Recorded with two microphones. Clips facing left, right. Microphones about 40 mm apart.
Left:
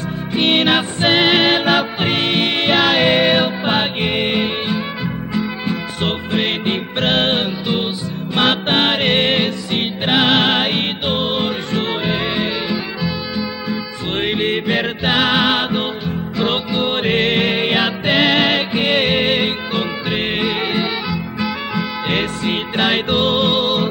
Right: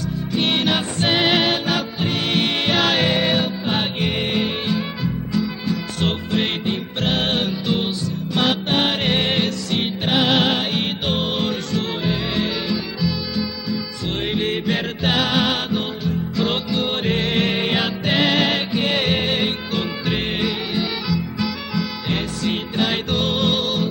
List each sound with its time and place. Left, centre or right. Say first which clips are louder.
0.3 s music: left 5 dB; left
2.2 s music: left 1 dB; left
3.1 s music: left 5 dB; left
6.6 s music: left 4 dB; left
7.2 s music: left 3 dB; left
8.4 s music: left 4 dB; left
11.1 s music: left 4 dB; left
11.7 s music: left 3 dB; left